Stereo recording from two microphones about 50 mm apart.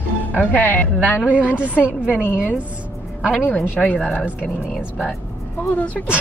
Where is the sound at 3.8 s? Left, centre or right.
Centre.